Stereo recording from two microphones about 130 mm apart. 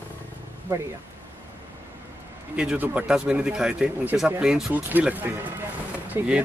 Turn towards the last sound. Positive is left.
turn(degrees=-20)  # may be behind; listen again after turning